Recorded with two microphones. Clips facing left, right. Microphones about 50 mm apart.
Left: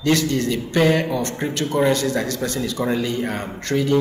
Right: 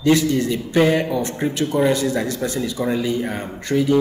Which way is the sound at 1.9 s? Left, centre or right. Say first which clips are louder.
Right 1 dB; centre.